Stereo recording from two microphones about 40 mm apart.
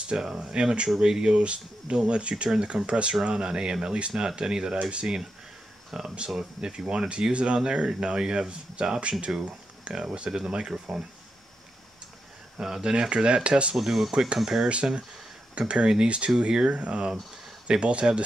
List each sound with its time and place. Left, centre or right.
0.0 s speech: right
12.5 s speech: centre
13.7 s speech: centre
14.7 s speech: right